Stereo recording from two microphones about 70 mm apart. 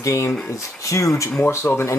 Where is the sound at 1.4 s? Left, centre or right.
Left.